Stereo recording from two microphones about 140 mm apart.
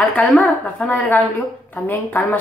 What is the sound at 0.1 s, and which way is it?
Speech, 10° left (ahead or behind).